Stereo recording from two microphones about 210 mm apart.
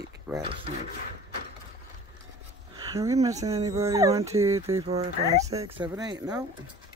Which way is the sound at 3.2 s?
15° right (ahead or behind).